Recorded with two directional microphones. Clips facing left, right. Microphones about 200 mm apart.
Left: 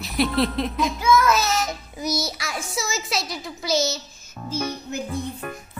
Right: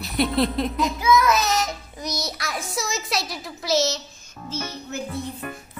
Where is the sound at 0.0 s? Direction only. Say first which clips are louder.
Even; centre (ahead or behind).